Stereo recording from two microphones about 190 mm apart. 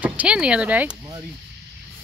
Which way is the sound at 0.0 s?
5° right (ahead or behind).